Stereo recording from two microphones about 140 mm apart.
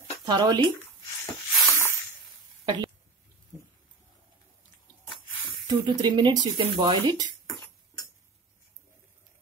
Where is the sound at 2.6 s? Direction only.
25° right (ahead or behind).